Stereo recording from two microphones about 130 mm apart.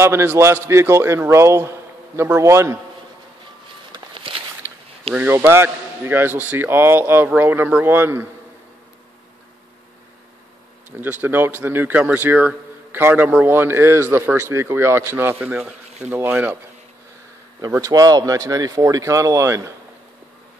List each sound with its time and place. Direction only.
0.0 s speech: 20° right (ahead or behind)
3.9 s walk: 40° right (ahead or behind)
4.6 s zipper: 20° right (ahead or behind)
5.1 s speech: 15° right (ahead or behind)
10.9 s speech: 15° right (ahead or behind)
17.6 s speech: 25° right (ahead or behind)